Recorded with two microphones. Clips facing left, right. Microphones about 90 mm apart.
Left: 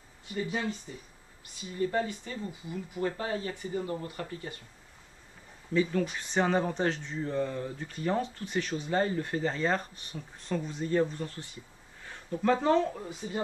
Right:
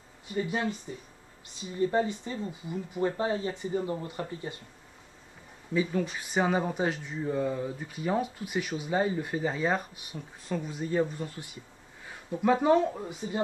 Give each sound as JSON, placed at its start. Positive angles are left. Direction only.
{"t": 0.3, "sound": "speech", "side_deg": -20}
{"t": 5.7, "sound": "speech", "side_deg": -10}